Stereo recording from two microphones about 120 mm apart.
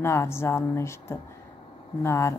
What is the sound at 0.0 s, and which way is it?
A woman's voice, 20° left (ahead or behind).